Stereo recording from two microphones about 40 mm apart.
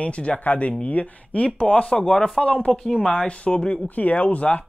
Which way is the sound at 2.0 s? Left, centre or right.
Centre.